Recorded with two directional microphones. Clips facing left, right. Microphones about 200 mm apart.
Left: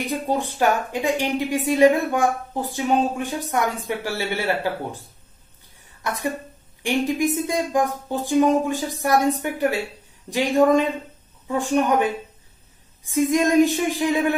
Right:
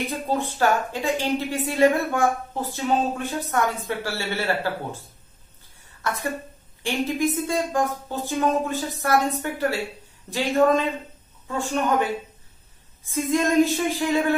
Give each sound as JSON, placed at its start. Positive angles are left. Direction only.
{"t": 0.1, "sound": "a woman's voice", "side_deg": 15}
{"t": 6.0, "sound": "a woman's voice", "side_deg": 15}
{"t": 7.3, "sound": "a woman's voice", "side_deg": 15}
{"t": 13.1, "sound": "a woman's voice", "side_deg": 15}